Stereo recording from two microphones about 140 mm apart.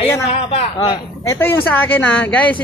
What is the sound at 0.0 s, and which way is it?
Speech, 45° left (ahead or behind).